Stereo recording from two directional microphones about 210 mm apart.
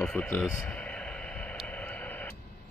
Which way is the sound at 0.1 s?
5° left (ahead or behind).